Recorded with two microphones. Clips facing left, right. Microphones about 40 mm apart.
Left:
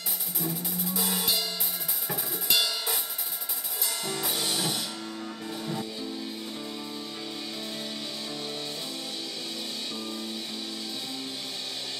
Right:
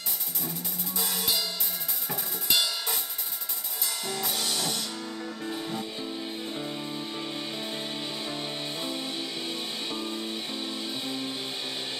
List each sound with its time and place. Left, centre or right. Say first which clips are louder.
0.4 s music: left 6 dB; centre
2.0 s drum kit: even; centre
4.0 s music: even; centre
5.2 s music: right 3 dB; centre
8.3 s music: right 2 dB; right